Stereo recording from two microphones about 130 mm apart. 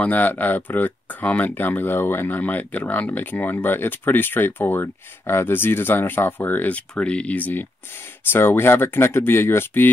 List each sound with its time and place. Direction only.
0.0 s speech: 10° left (ahead or behind)